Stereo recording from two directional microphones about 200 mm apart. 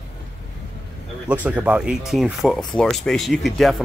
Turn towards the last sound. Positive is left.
turn(degrees=0)  # may be behind; listen again after turning